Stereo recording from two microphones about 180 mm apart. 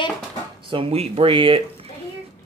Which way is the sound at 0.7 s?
30° right (ahead or behind).